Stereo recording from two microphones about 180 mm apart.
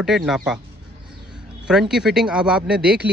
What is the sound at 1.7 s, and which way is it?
Speech, 5° right (ahead or behind).